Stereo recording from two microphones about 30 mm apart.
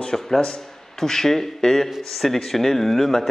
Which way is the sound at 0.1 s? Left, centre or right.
Centre.